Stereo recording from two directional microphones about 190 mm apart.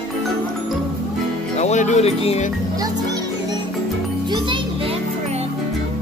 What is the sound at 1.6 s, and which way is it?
Speech, 40° left (ahead or behind).